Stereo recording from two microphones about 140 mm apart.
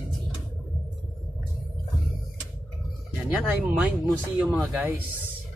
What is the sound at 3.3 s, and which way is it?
Speech, 15° right (ahead or behind).